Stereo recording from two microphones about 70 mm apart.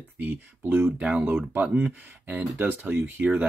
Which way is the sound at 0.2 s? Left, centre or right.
Right.